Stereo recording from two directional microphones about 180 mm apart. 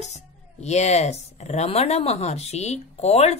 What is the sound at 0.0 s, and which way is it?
Speech, 40° left (ahead or behind).